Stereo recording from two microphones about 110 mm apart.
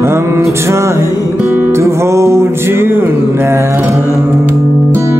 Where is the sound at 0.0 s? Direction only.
25° right (ahead or behind).